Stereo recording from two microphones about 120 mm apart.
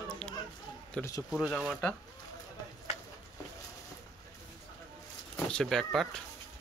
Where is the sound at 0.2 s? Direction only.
5° left (ahead or behind).